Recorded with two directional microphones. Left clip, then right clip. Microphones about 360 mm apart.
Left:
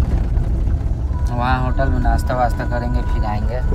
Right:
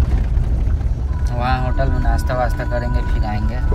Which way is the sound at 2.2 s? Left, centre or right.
Centre.